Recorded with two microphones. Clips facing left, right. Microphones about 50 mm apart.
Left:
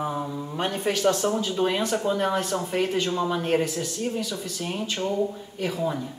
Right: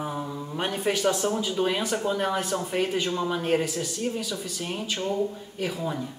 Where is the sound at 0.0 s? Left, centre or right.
Centre.